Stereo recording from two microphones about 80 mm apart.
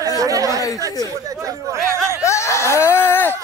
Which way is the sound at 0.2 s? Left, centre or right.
Right.